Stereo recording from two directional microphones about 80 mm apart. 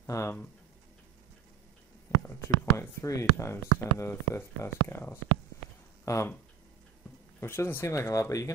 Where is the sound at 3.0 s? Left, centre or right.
Left.